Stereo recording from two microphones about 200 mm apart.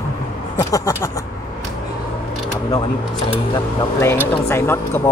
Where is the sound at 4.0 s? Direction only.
10° left (ahead or behind).